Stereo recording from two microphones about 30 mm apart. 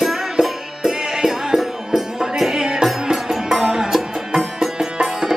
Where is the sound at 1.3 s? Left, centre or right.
Centre.